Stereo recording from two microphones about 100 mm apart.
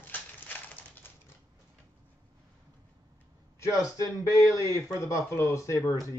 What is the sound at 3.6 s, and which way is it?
Speech, 35° left (ahead or behind).